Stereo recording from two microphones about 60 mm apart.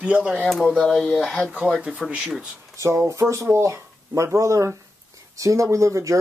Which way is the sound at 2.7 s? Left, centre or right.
Right.